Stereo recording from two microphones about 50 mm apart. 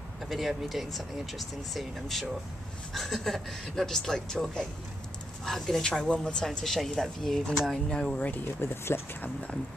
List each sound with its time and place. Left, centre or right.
0.3 s speech: centre
7.9 s speech: centre
8.5 s speech: left